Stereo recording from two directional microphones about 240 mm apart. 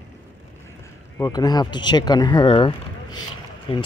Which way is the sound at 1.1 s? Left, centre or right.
Centre.